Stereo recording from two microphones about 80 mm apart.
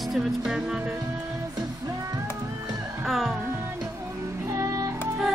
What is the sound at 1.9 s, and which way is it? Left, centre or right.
Music, right.